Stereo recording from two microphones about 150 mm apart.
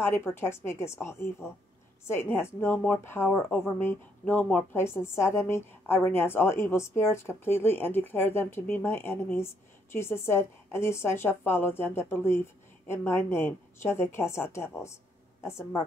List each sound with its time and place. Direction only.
0.0 s a woman's voice: 15° left (ahead or behind)